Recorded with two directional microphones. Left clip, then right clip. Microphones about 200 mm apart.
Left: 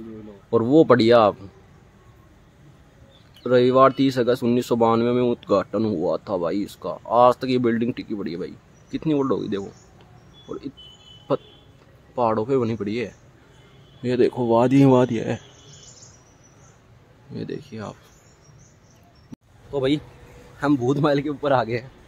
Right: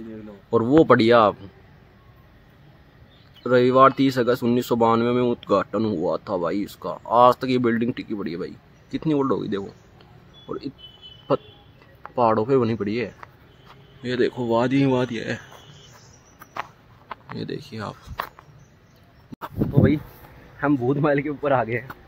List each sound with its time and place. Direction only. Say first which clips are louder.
0.5 s speech: even; centre (ahead or behind)
3.4 s speech: even; 5° left (ahead or behind)
12.2 s speech: right 2 dB; 10° right (ahead or behind)
14.0 s speech: left 3 dB; 20° left (ahead or behind)
17.3 s speech: left 1 dB; 5° left (ahead or behind)
19.3 s a sound: right 12 dB; centre (ahead or behind)
20.6 s speech: left 1 dB; 15° left (ahead or behind)